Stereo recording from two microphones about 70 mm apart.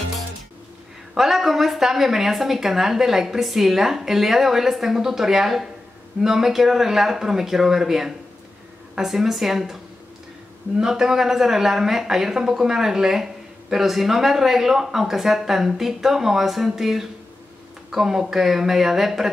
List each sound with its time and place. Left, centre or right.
1.1 s speech: centre
10.8 s speech: centre